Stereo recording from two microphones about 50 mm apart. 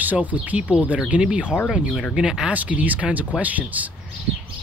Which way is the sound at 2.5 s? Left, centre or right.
Right.